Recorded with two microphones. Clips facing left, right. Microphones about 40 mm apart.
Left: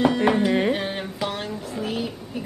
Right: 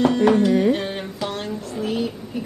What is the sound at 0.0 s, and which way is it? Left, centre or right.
Music, centre.